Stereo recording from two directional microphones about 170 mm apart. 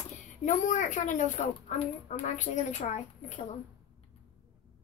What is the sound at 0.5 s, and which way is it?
A woman's voice, 50° left (ahead or behind).